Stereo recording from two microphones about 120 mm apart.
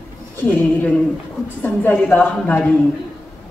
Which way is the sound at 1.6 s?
15° left (ahead or behind).